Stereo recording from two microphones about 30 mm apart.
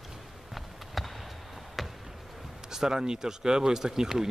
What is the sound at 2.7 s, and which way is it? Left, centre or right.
Speech, right.